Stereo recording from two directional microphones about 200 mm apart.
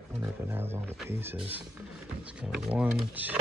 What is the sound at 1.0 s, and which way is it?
Speech, 10° right (ahead or behind).